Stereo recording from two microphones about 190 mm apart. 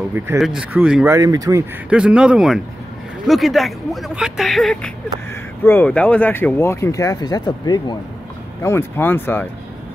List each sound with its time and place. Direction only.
0.2 s speech: 10° right (ahead or behind)
1.1 s speech: 20° right (ahead or behind)
1.9 s speech: 5° right (ahead or behind); by 9.5 s 10° left (ahead or behind)